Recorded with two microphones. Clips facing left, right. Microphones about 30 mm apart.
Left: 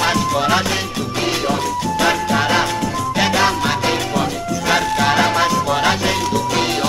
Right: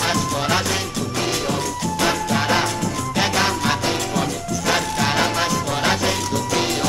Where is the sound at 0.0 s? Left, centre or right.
Centre.